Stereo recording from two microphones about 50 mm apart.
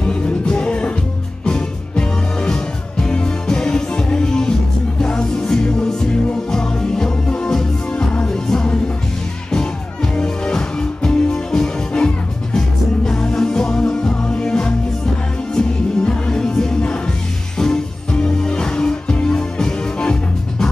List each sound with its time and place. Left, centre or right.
0.1 s music: left
10.1 s music: centre